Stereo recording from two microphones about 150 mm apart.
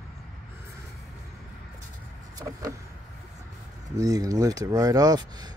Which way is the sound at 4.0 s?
25° right (ahead or behind).